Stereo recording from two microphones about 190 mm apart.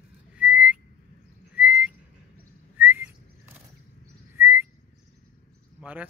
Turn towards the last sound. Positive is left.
turn(degrees=-10)  # may be behind; listen again after turning